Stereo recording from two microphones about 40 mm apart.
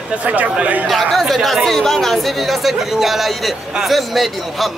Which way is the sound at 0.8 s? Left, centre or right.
Centre.